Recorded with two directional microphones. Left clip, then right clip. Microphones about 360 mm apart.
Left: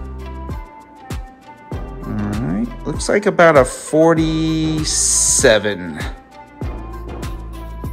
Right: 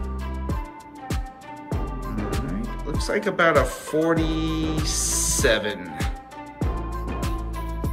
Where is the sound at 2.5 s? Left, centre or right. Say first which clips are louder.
Left 7 dB; centre.